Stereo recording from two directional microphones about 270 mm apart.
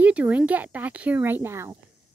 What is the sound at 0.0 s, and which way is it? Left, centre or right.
Speech, centre.